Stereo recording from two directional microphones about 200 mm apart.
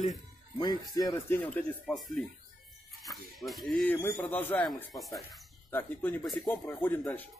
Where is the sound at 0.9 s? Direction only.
15° left (ahead or behind).